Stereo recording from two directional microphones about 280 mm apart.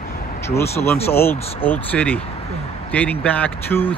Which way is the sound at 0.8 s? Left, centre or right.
Centre.